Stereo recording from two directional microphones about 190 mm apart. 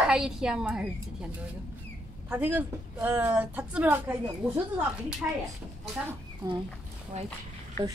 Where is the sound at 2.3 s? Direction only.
10° right (ahead or behind).